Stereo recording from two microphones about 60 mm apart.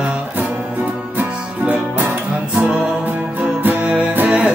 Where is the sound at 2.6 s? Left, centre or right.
Centre.